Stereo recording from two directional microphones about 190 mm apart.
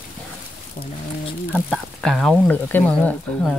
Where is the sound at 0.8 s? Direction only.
45° left (ahead or behind).